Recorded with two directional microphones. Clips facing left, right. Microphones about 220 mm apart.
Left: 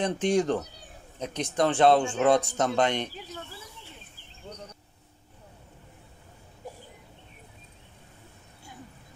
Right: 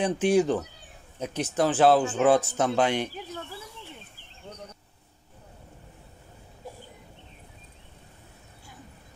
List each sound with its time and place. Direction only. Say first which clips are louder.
0.0 s speech: right 2 dB; 5° right (ahead or behind)